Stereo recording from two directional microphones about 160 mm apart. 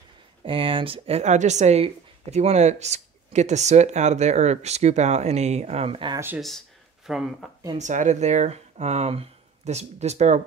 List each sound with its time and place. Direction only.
0.4 s speech: 35° right (ahead or behind)
6.1 s speech: 15° right (ahead or behind)
7.7 s speech: 50° right (ahead or behind)